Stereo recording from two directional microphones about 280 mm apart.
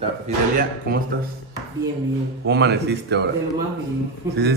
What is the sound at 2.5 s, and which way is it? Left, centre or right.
Speech, right.